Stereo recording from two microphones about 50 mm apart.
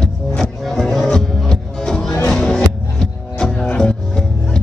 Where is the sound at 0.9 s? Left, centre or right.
Centre.